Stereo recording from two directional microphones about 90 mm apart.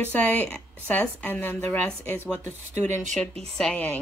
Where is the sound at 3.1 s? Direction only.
5° left (ahead or behind).